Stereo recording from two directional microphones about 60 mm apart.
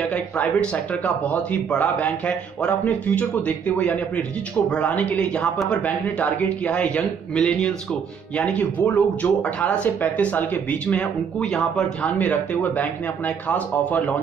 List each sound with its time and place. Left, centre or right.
0.0 s speech: centre
8.4 s speech: left
11.4 s speech: centre
12.2 s speech: left